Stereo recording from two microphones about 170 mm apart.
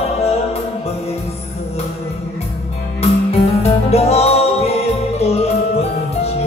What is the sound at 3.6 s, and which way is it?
Music, 40° left (ahead or behind).